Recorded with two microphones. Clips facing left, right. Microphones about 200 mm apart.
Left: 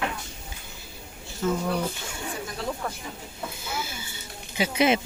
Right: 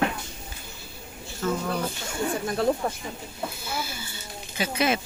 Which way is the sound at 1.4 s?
15° left (ahead or behind).